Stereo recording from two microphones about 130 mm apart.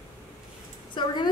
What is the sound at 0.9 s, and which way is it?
Speech, 35° left (ahead or behind).